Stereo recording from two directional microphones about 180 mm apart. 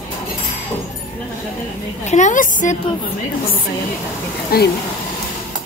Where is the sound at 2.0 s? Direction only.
40° left (ahead or behind).